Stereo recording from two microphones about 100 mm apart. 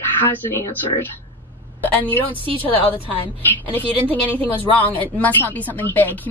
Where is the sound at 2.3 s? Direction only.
60° right (ahead or behind).